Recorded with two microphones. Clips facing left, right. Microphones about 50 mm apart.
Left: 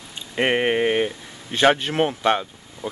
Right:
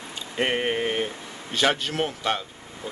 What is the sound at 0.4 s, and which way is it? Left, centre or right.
Speech, left.